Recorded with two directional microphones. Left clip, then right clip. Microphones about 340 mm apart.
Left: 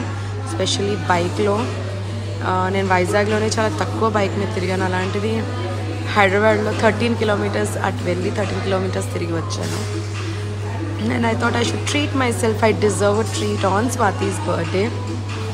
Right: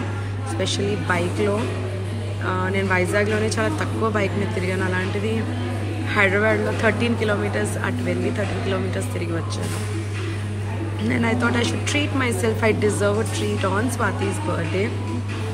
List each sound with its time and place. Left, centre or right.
0.6 s a woman's voice: centre
6.1 s a woman's voice: centre
11.1 s a woman's voice: centre